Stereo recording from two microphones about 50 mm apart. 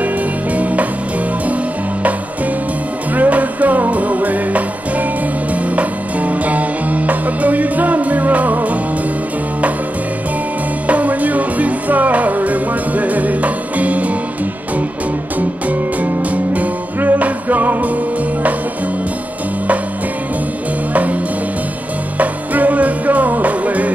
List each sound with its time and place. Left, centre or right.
0.6 s music: right
3.2 s music: right
10.9 s music: right
16.0 s music: right
20.9 s music: right
22.2 s music: right